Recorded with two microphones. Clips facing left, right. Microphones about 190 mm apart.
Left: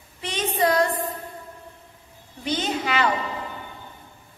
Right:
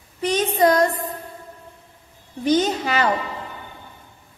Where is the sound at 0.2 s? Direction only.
40° right (ahead or behind).